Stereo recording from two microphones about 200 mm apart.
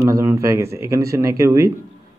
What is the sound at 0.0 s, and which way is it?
Speech, 15° right (ahead or behind).